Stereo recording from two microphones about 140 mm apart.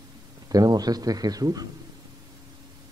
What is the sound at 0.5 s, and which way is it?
A man's voice, 25° right (ahead or behind).